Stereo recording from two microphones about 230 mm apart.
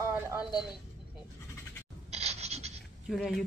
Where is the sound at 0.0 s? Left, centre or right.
Centre.